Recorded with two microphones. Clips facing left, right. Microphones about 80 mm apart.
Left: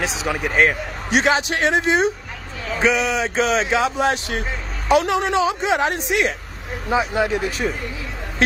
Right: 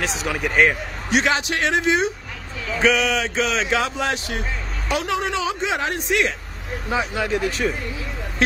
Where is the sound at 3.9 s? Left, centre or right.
Left.